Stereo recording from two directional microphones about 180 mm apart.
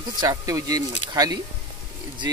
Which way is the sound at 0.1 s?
20° right (ahead or behind).